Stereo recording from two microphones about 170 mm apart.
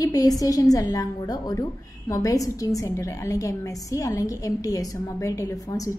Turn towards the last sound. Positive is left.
turn(degrees=20)  # may be behind; listen again after turning